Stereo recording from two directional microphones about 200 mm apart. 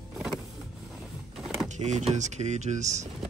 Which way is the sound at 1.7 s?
35° right (ahead or behind).